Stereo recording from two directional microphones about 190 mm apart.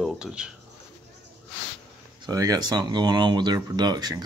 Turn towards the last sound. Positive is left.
turn(degrees=-20)  # may be behind; listen again after turning